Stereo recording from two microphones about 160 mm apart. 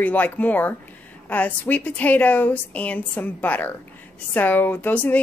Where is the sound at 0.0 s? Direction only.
10° left (ahead or behind).